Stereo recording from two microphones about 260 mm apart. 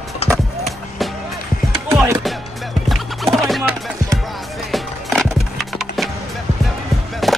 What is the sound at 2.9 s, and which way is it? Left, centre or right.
Music, centre.